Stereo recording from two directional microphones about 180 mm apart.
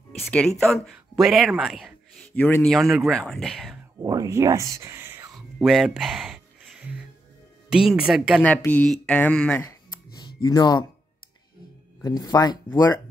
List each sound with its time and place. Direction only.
0.2 s speech: 5° left (ahead or behind)
4.0 s speech: 20° right (ahead or behind)
5.7 s a sound: centre (ahead or behind)
7.7 s speech: 5° right (ahead or behind)
8.5 s speech: 5° left (ahead or behind)
10.2 s speech: 20° left (ahead or behind)
12.0 s speech: 20° left (ahead or behind)